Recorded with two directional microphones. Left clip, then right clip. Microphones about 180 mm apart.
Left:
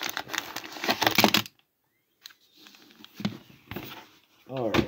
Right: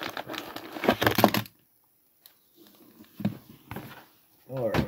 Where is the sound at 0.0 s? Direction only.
30° right (ahead or behind).